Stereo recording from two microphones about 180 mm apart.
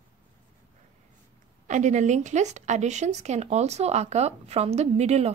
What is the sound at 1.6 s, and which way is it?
Speech, 40° right (ahead or behind).